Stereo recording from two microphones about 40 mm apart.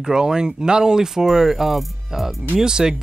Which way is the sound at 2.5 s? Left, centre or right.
Centre.